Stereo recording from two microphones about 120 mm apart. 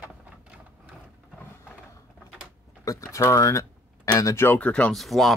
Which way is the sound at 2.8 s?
25° left (ahead or behind).